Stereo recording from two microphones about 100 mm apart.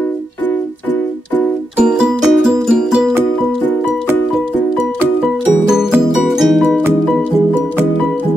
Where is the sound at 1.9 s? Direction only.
10° right (ahead or behind).